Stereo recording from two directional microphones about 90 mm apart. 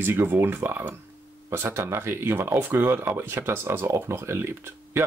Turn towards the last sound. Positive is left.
turn(degrees=-25)  # may be behind; listen again after turning